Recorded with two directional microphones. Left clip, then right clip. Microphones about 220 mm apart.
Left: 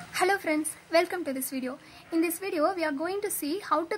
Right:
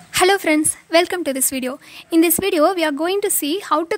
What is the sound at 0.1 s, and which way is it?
A woman's voice, 45° right (ahead or behind).